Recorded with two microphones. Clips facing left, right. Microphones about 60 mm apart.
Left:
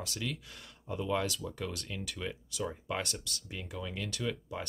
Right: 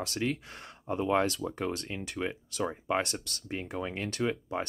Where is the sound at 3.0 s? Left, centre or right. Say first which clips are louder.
Right 4 dB; right.